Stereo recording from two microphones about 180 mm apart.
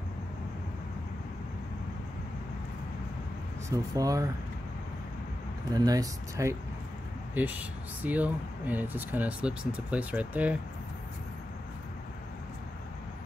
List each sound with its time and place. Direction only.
3.7 s speech: 20° right (ahead or behind)
5.7 s speech: 20° right (ahead or behind)